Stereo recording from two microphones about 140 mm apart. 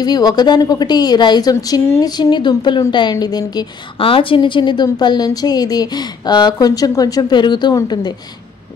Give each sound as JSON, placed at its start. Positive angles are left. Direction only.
{"t": 0.0, "sound": "a woman's voice", "side_deg": 30}
{"t": 4.0, "sound": "a woman's voice", "side_deg": 40}